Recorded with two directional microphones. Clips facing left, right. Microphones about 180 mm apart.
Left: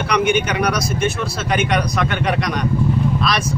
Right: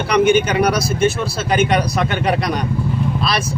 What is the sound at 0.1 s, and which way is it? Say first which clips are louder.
Speech: right 4 dB; 30° right (ahead or behind).